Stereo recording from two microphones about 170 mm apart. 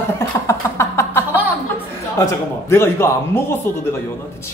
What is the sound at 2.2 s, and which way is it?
A man's voice, 15° left (ahead or behind).